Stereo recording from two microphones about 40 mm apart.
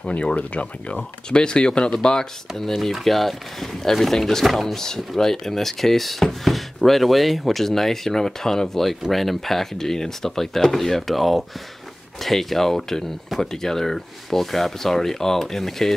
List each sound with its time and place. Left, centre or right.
0.0 s speech: left
1.3 s speech: left